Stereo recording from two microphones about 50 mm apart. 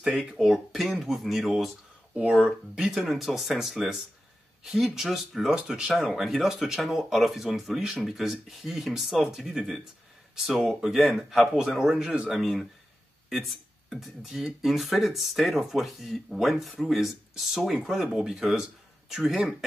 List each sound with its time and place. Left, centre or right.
0.2 s speech: centre
2.1 s speech: right
2.7 s speech: centre
11.8 s speech: centre
12.3 s speech: centre
13.8 s speech: centre